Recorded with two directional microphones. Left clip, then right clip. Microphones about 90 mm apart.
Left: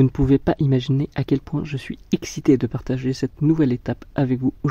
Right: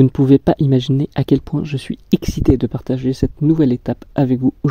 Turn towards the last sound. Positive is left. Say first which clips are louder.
# right 5 dB
turn(degrees=-30)  # may be behind; listen again after turning